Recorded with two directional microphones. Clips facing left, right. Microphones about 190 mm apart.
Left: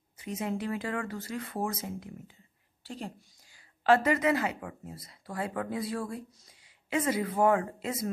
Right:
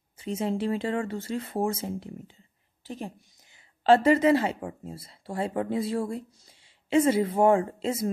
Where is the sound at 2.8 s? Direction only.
15° right (ahead or behind).